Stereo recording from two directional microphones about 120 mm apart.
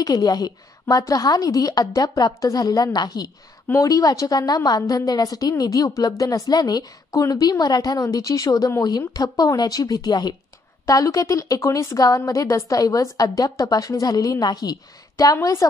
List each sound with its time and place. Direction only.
0.0 s a woman's voice: 35° left (ahead or behind)